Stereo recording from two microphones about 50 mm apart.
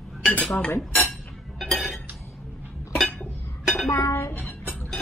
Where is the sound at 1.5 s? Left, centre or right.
Centre.